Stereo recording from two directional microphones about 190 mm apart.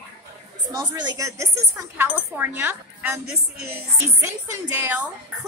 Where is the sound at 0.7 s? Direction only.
20° right (ahead or behind).